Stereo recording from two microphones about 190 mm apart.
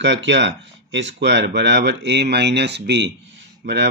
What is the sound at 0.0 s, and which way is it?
Speech, 70° right (ahead or behind).